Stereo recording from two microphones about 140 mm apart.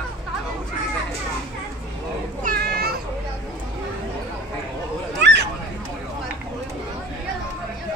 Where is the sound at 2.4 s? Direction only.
90° right.